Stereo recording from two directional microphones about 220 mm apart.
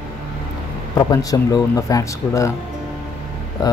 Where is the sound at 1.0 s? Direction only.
15° left (ahead or behind).